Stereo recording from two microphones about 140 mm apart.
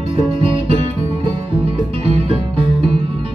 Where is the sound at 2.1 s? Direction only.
40° right (ahead or behind).